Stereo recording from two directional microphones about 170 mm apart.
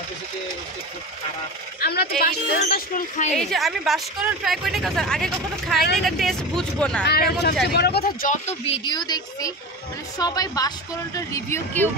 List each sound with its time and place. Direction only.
1.8 s a woman's voice: 65° left (ahead or behind)
3.3 s speech: centre (ahead or behind)
7.1 s speech: 70° left (ahead or behind)
8.5 s speech: 35° left (ahead or behind); by 11.9 s 15° left (ahead or behind)